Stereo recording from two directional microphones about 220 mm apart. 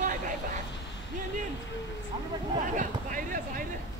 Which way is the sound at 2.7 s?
35° right (ahead or behind).